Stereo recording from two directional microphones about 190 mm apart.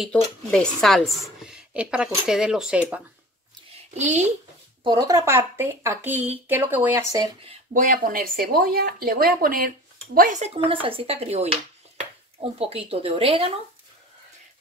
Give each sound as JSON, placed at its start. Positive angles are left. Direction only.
{"t": 0.5, "sound": "speech", "side_deg": 5}
{"t": 3.7, "sound": "speech", "side_deg": -35}
{"t": 4.8, "sound": "a woman's voice", "side_deg": -20}
{"t": 7.7, "sound": "speech", "side_deg": -45}